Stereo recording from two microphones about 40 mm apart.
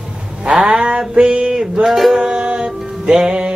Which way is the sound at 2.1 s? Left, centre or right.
Centre.